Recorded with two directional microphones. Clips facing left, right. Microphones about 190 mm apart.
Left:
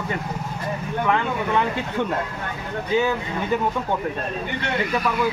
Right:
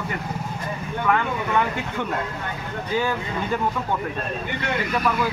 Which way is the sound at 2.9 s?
20° left (ahead or behind).